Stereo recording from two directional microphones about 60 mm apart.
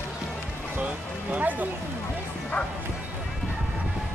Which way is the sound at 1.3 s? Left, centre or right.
Right.